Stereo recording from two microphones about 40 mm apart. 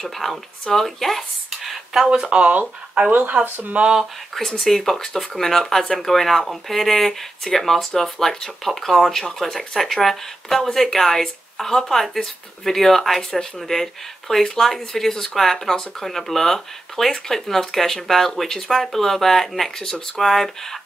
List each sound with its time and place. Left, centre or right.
0.0 s speech: centre
2.0 s speech: right
3.4 s speech: right
4.4 s speech: centre